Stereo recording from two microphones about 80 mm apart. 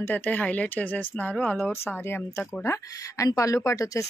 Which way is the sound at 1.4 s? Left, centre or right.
Centre.